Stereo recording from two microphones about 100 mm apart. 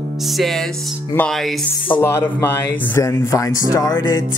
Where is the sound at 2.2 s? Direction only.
30° left (ahead or behind).